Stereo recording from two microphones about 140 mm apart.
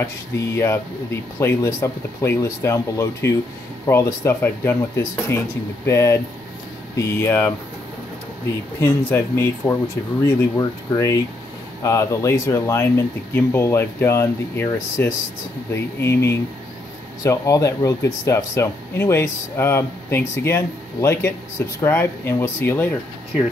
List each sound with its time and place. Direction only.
0.6 s speech: 20° left (ahead or behind)
8.8 s speech: 15° left (ahead or behind)